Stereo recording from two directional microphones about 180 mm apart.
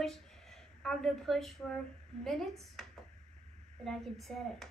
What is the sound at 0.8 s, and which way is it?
A woman's voice, 5° left (ahead or behind).